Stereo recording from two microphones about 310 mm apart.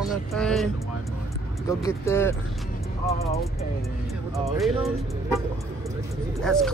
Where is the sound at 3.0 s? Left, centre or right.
Centre.